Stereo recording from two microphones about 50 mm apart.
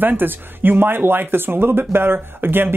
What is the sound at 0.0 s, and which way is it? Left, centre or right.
Speech, right.